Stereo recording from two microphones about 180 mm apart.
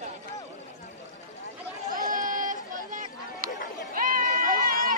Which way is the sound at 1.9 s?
45° right (ahead or behind).